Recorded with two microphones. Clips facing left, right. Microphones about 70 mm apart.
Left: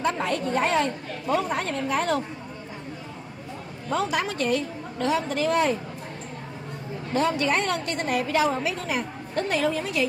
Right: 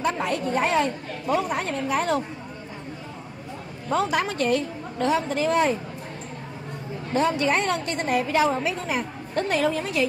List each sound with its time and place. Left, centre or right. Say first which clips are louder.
0.0 s a woman's voice: even; centre
3.9 s a woman's voice: right 2 dB; right
7.2 s a woman's voice: right 1 dB; right
9.5 s a woman's voice: right 1 dB; right